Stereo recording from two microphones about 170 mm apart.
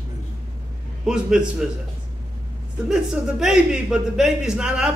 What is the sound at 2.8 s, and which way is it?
A man's voice, 5° right (ahead or behind).